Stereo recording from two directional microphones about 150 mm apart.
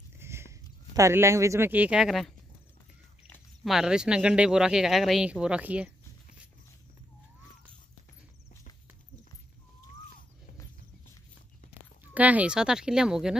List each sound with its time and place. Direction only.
0.2 s speech: 15° right (ahead or behind); by 2.3 s centre (ahead or behind)
3.6 s speech: 5° right (ahead or behind)
12.0 s speech: 10° right (ahead or behind)